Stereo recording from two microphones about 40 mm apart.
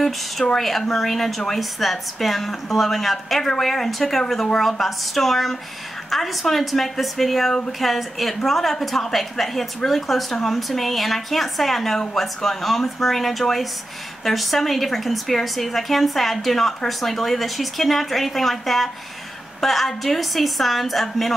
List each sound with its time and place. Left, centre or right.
0.6 s a woman's voice: centre